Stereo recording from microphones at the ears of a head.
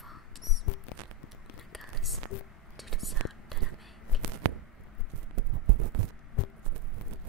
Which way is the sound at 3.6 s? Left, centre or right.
Right.